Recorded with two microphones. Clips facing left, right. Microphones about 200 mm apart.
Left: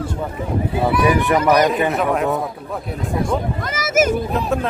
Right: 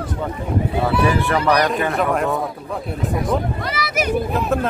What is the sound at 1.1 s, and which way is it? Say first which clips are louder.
Speech: left 3 dB; 15° left (ahead or behind).